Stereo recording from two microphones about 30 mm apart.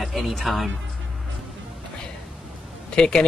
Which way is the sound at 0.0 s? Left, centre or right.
Centre.